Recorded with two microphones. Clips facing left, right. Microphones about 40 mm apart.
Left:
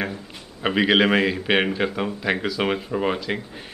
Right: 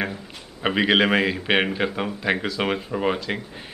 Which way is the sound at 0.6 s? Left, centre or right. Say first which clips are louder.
Left 1 dB; centre.